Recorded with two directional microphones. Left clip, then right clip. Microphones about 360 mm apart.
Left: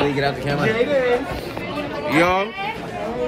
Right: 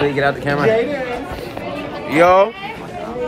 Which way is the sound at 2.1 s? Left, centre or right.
Centre.